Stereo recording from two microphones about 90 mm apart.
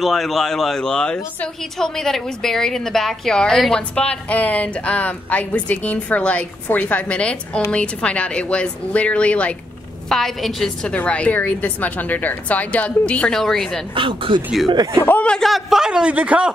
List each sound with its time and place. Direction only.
0.0 s speech: centre (ahead or behind)
10.0 s a woman's voice: 5° left (ahead or behind)
13.9 s speech: 70° right (ahead or behind)
15.0 s speech: 20° left (ahead or behind)
15.3 s a man's voice: centre (ahead or behind)